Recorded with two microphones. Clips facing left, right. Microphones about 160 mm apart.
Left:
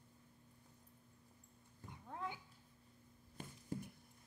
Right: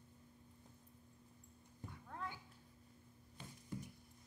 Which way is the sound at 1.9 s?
20° left (ahead or behind).